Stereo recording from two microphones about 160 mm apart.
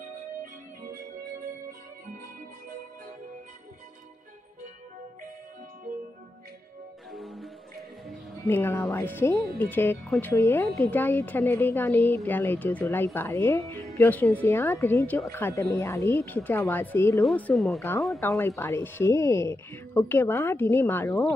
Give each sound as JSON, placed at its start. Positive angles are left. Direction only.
{"t": 7.1, "sound": "music", "side_deg": 0}
{"t": 8.5, "sound": "a woman's voice", "side_deg": 15}
{"t": 18.2, "sound": "a woman's voice", "side_deg": 15}